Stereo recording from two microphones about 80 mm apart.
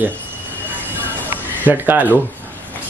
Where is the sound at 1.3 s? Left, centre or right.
Right.